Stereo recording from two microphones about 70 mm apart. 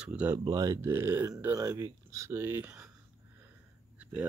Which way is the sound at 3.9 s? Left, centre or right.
Centre.